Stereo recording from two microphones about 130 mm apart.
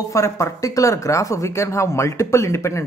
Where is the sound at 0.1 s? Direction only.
25° left (ahead or behind).